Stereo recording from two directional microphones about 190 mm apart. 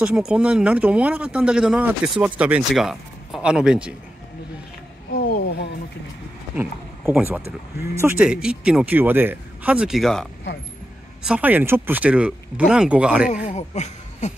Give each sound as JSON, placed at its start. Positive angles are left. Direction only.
{"t": 0.0, "sound": "speech", "side_deg": -5}
{"t": 6.5, "sound": "speech", "side_deg": -10}
{"t": 11.2, "sound": "speech", "side_deg": -10}
{"t": 13.3, "sound": "speech", "side_deg": 40}